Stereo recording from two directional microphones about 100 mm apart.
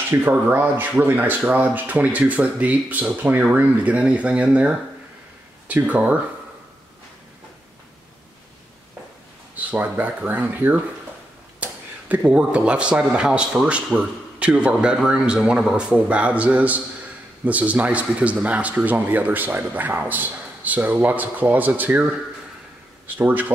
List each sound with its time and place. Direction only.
0.2 s speech: 20° right (ahead or behind)
9.6 s a man's voice: 15° right (ahead or behind)